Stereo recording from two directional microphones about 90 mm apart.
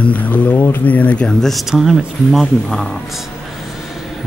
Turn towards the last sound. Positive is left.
turn(degrees=5)  # may be behind; listen again after turning